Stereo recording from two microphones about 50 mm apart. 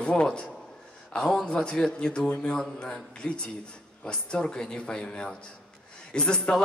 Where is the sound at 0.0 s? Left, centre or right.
Centre.